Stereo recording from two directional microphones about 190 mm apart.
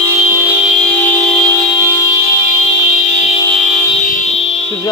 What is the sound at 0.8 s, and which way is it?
Vehicle horn, 10° left (ahead or behind).